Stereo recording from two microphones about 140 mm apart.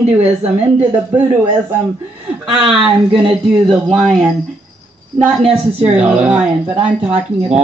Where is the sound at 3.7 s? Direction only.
5° right (ahead or behind).